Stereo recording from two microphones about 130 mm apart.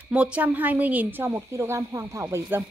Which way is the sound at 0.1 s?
10° right (ahead or behind).